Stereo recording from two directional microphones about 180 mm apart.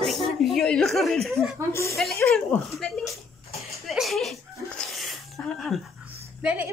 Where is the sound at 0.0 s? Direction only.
Centre (ahead or behind).